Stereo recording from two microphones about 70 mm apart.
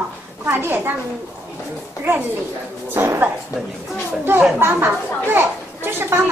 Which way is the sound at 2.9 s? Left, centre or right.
Right.